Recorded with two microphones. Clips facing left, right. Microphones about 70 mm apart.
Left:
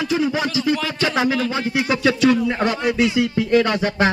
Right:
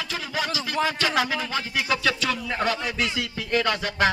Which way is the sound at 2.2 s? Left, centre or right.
Left.